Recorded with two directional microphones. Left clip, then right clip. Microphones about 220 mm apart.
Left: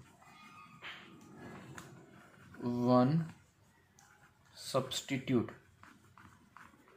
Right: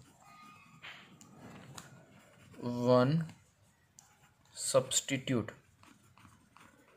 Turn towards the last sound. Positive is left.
turn(degrees=-40)  # may be behind; listen again after turning